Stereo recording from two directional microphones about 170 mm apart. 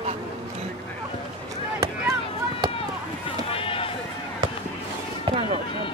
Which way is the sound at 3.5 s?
35° left (ahead or behind).